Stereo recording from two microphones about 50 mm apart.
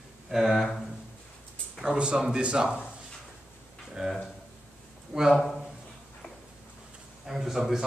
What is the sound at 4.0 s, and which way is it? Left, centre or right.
Speech, centre.